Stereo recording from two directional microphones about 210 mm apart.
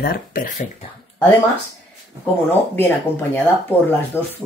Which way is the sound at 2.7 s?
10° left (ahead or behind).